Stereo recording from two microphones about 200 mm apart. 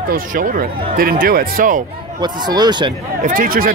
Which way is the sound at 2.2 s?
20° right (ahead or behind).